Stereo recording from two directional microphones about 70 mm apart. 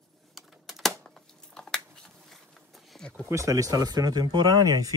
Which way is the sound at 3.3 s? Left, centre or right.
Right.